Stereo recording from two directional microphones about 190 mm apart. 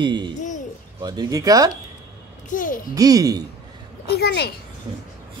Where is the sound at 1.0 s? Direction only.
20° right (ahead or behind).